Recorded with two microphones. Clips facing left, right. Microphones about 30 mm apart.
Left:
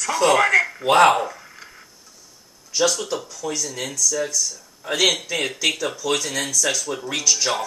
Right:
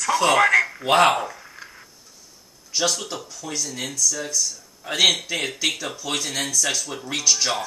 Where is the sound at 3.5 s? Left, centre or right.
Right.